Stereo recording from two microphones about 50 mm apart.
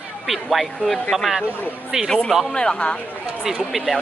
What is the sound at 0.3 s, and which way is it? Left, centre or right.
Speech, centre.